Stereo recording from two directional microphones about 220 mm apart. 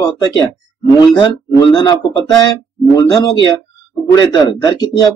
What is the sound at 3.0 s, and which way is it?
Speech, 15° left (ahead or behind).